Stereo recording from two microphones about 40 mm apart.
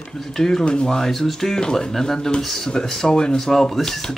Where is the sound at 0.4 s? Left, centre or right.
Centre.